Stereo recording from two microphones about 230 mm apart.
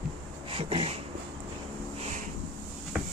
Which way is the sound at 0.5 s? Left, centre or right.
Right.